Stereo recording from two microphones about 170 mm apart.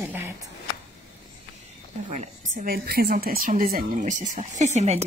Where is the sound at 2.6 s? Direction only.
60° right (ahead or behind).